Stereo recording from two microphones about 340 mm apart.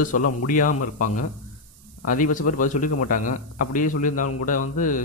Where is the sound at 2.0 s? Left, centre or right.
Left.